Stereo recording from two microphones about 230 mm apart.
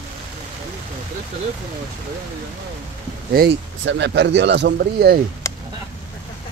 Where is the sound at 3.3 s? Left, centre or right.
Right.